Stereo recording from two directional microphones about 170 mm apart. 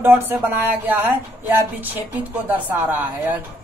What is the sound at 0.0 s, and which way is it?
A woman's voice, 10° right (ahead or behind).